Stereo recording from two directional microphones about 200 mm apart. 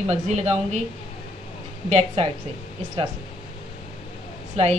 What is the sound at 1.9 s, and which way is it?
Speech, 30° right (ahead or behind).